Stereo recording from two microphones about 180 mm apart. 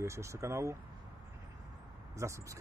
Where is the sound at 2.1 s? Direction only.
15° right (ahead or behind).